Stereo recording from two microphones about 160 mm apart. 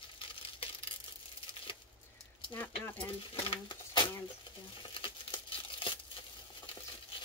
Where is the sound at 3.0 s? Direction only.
30° left (ahead or behind).